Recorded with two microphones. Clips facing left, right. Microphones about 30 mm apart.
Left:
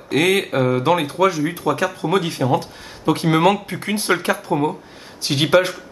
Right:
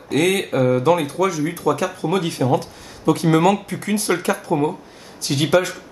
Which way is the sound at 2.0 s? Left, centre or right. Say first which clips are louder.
Even; centre.